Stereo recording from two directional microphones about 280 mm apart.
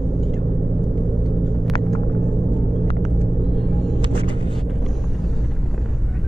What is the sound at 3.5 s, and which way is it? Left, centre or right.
Vehicle, centre.